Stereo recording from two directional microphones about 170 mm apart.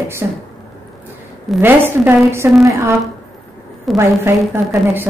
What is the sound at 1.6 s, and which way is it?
Speech, 10° right (ahead or behind).